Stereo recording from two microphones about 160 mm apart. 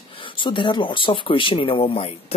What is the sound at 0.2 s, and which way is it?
Speech, 30° left (ahead or behind).